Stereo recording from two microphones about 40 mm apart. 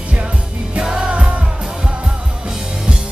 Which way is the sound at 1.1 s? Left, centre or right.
Right.